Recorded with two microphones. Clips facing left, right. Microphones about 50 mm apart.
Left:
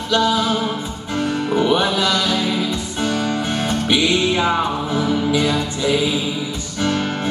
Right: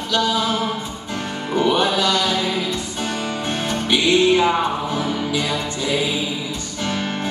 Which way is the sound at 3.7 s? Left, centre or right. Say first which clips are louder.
Right 1 dB; centre.